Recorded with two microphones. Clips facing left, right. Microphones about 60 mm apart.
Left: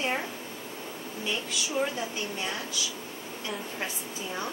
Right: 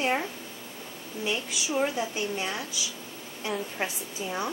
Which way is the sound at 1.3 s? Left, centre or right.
Centre.